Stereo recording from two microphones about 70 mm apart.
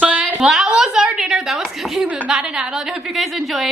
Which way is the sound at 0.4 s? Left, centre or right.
Centre.